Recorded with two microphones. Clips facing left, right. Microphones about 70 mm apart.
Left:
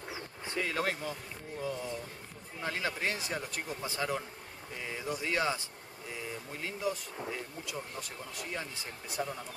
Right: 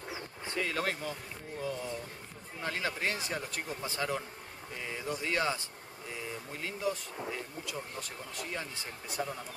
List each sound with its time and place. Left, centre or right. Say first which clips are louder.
0.7 s speech: left 2 dB; centre
6.8 s speech: right 1 dB; centre
9.2 s speech: even; centre